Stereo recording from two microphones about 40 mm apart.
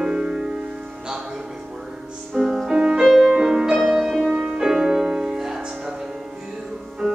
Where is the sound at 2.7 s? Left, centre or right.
Centre.